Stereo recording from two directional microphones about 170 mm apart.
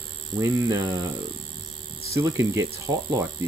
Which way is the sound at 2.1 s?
20° right (ahead or behind).